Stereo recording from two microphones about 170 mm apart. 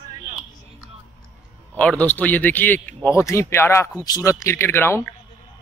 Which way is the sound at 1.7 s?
5° left (ahead or behind).